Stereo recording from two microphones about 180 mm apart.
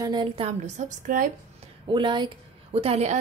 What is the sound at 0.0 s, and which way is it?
Speech, 25° right (ahead or behind).